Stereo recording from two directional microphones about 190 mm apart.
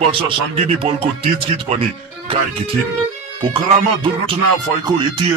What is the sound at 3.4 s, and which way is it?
Speech, 25° right (ahead or behind).